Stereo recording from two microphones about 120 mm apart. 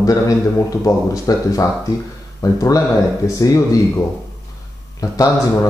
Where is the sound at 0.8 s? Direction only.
30° left (ahead or behind).